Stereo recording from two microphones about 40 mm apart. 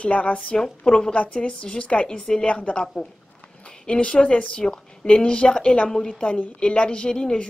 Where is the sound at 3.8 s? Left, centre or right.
Left.